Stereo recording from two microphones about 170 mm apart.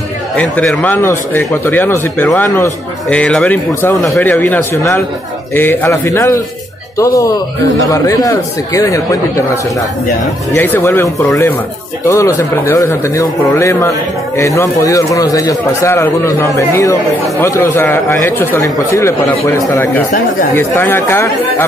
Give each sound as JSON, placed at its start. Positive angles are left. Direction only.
{"t": 0.4, "sound": "speech", "side_deg": 10}
{"t": 10.5, "sound": "speech", "side_deg": 15}